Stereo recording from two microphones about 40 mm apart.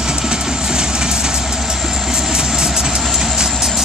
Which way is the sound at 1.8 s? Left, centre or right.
Centre.